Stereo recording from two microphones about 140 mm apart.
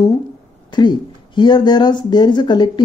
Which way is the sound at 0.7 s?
35° left (ahead or behind).